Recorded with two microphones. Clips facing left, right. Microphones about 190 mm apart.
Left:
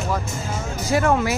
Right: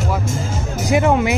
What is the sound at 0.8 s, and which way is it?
Speech, 20° right (ahead or behind).